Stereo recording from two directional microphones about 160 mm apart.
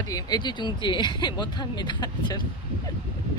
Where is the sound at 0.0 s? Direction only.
25° left (ahead or behind).